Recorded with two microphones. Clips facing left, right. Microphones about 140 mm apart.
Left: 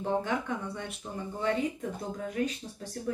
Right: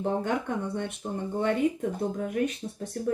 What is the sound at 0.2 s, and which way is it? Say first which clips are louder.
Speech: right 3 dB; 55° right (ahead or behind).